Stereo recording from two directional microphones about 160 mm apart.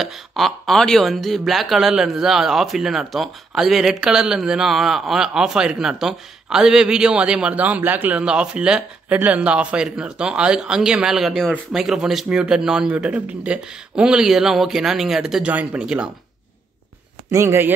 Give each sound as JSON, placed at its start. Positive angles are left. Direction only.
{"t": 0.0, "sound": "speech", "side_deg": 0}
{"t": 17.3, "sound": "speech", "side_deg": -15}